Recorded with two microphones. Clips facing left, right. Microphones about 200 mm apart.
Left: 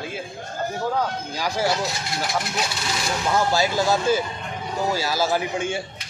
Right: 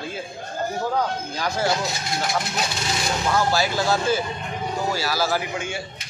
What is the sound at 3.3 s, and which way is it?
A man's voice, 20° left (ahead or behind).